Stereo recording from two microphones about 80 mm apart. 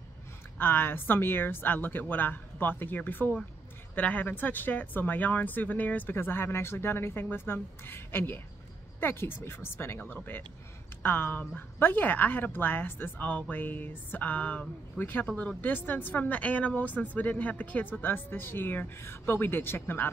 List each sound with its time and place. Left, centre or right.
0.6 s speech: left